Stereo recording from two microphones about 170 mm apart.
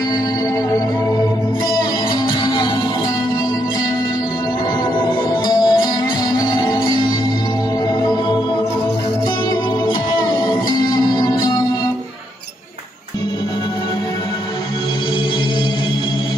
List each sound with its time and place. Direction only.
2.4 s music: 25° left (ahead or behind)
5.0 s music: 25° left (ahead or behind)
9.8 s music: 25° left (ahead or behind)